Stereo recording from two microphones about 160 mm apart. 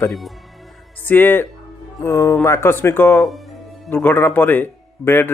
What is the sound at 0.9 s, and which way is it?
Speech, 10° left (ahead or behind).